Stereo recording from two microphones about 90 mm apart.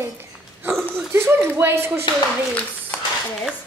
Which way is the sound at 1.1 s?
25° right (ahead or behind).